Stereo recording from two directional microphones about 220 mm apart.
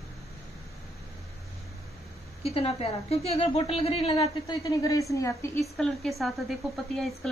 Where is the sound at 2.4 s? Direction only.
25° left (ahead or behind).